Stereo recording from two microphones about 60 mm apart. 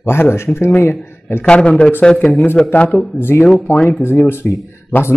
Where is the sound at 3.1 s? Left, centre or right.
Left.